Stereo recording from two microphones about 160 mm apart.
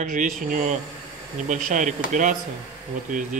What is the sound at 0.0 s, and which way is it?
Speech, 55° right (ahead or behind).